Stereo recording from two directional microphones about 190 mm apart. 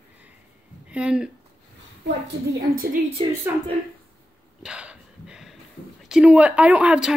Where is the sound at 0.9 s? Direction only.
5° right (ahead or behind).